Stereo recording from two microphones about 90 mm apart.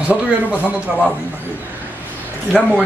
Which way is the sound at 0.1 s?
15° right (ahead or behind).